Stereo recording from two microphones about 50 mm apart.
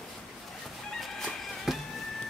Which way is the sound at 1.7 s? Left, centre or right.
Centre.